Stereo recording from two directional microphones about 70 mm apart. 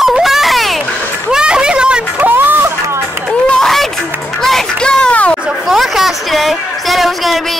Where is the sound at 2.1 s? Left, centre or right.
Right.